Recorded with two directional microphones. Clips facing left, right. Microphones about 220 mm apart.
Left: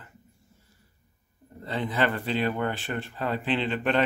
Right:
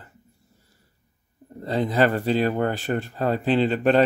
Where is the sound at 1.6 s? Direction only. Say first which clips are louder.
Right 6 dB; 40° right (ahead or behind).